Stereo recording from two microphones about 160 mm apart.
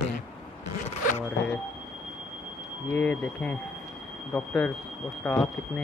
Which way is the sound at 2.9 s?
10° left (ahead or behind).